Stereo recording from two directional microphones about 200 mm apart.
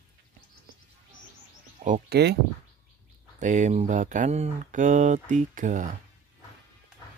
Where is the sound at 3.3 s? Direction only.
40° right (ahead or behind).